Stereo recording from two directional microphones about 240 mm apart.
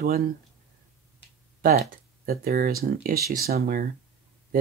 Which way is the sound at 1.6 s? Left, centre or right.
Right.